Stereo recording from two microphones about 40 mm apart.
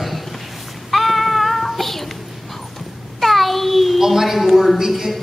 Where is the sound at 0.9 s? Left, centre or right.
Centre.